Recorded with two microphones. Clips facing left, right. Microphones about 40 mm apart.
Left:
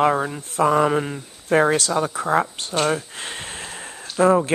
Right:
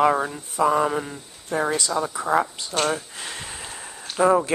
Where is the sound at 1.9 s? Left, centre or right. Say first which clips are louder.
Left 3 dB; left.